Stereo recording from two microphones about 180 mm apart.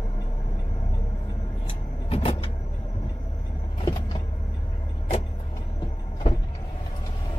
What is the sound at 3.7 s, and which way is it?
Vehicle, 25° left (ahead or behind).